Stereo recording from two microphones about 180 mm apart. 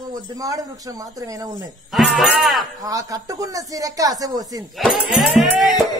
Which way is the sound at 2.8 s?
20° right (ahead or behind).